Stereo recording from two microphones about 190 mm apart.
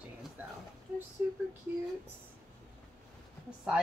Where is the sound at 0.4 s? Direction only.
10° right (ahead or behind).